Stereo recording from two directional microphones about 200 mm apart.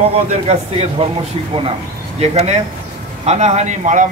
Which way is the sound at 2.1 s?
35° right (ahead or behind).